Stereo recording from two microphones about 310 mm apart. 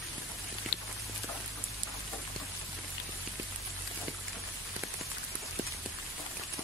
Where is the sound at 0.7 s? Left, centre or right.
Left.